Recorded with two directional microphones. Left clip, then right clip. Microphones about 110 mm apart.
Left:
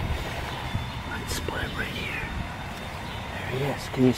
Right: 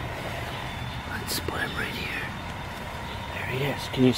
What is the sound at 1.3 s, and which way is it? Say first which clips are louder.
Whispering: right 3 dB; 40° right (ahead or behind).